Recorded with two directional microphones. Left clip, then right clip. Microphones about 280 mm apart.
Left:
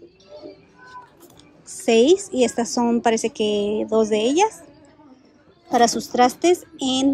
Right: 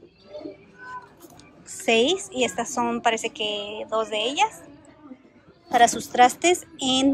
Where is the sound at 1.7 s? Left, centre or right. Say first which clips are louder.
Left 5 dB; centre.